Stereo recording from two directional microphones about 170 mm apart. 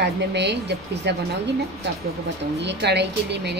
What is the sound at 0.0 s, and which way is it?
Speech, 90° right.